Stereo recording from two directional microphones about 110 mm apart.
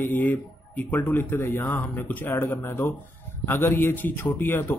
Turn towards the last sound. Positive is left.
turn(degrees=20)  # may be behind; listen again after turning